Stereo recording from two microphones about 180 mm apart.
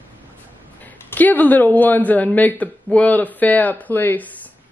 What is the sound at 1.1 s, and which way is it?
Speech, 10° left (ahead or behind).